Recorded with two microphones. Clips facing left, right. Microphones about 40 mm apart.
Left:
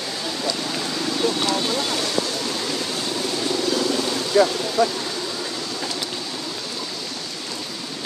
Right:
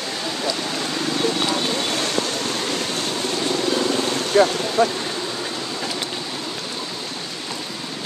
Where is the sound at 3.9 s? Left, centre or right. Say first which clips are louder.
Right 1 dB; right.